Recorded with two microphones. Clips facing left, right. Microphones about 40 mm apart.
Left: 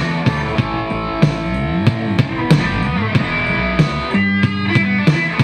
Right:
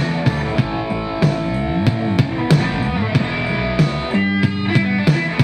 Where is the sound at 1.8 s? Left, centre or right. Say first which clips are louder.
Left 1 dB; left.